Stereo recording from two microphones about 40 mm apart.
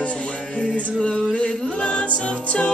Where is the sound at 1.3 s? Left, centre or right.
Left.